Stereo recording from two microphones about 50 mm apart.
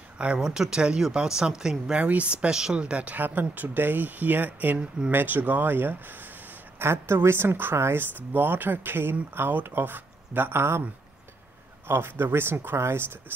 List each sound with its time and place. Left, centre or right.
0.4 s speech: centre
2.0 s speech: right
6.8 s speech: right
7.7 s speech: right
8.3 s speech: right
11.9 s speech: right